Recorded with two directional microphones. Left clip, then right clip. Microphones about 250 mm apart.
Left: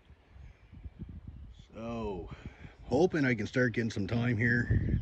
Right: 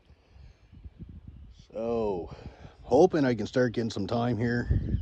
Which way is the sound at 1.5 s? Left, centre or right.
Right.